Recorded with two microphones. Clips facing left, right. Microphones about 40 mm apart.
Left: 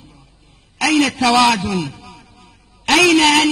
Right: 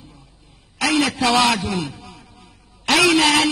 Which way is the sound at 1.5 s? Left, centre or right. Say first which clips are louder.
Left 3 dB; centre.